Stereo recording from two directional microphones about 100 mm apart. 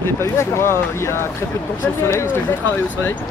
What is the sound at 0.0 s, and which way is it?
Speech, 25° left (ahead or behind).